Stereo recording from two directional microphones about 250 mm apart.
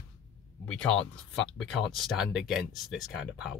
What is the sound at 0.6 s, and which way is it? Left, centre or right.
Speech, centre.